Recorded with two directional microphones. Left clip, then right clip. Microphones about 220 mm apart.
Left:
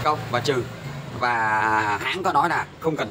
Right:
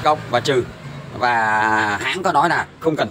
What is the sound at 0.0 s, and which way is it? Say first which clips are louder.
A man's voice: right 5 dB; 25° right (ahead or behind).